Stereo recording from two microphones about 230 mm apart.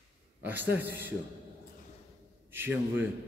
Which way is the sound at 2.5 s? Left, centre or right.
Centre.